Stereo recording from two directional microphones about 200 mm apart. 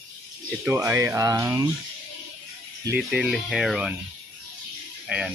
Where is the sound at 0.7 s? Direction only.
15° right (ahead or behind).